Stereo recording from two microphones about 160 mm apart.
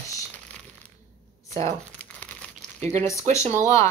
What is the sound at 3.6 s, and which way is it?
Speech, 15° left (ahead or behind).